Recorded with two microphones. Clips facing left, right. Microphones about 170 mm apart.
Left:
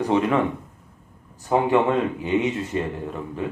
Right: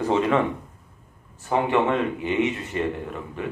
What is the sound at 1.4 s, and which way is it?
Speech, 20° left (ahead or behind).